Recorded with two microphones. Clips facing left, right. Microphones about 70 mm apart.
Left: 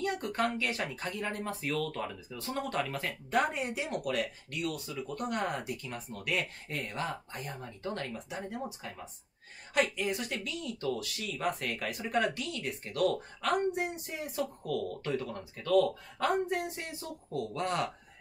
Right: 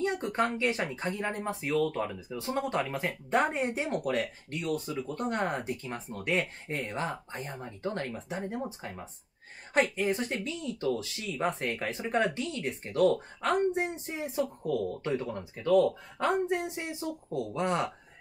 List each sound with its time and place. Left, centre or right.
0.0 s speech: right